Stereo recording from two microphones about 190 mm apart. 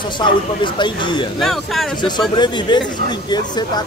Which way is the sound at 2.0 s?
25° left (ahead or behind).